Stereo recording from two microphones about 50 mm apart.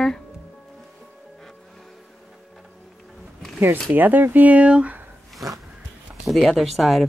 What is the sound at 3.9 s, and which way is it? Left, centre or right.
Speech, right.